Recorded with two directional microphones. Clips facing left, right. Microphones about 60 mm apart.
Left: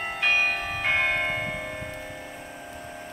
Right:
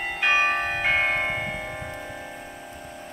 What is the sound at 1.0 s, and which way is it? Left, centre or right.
Church bell, centre.